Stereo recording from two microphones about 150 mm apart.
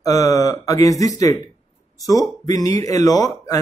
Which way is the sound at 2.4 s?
25° left (ahead or behind).